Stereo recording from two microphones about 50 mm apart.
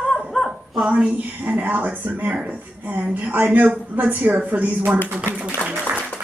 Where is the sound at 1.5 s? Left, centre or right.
Right.